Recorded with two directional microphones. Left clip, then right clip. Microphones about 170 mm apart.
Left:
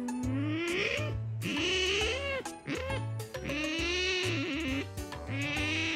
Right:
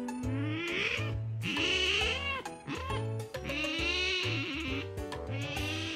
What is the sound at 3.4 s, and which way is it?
Music, 10° left (ahead or behind).